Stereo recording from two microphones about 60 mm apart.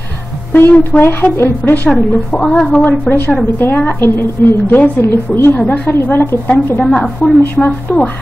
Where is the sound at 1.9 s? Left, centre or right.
Centre.